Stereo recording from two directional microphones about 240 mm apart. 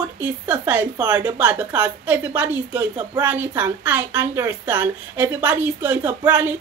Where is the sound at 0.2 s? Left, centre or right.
Centre.